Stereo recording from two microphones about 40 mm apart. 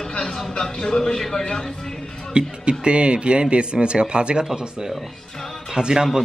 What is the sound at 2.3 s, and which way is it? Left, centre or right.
A man's voice, right.